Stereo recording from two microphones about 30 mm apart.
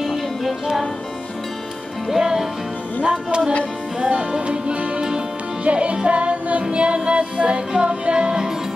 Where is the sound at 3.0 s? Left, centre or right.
Right.